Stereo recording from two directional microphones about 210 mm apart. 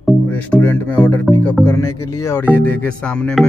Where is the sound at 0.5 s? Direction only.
10° left (ahead or behind).